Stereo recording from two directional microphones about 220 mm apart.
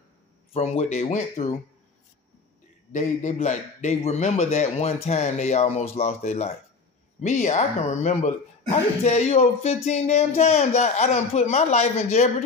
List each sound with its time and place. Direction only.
0.5 s a man's voice: 30° left (ahead or behind)
2.9 s a man's voice: 35° left (ahead or behind)